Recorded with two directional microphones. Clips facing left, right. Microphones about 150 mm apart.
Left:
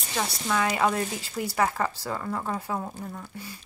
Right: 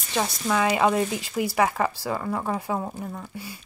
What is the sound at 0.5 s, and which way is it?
Speech, 20° right (ahead or behind).